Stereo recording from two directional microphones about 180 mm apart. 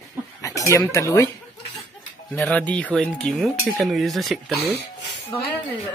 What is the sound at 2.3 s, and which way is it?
Speech, 5° left (ahead or behind).